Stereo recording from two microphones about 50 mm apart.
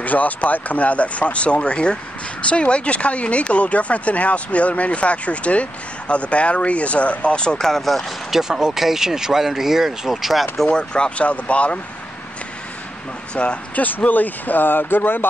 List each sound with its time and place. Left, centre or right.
0.0 s speech: left; by 8.1 s centre
8.3 s speech: centre
10.7 s speech: centre
13.3 s speech: left
13.8 s speech: left